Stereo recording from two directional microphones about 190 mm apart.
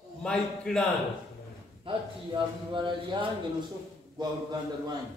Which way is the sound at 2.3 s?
25° right (ahead or behind).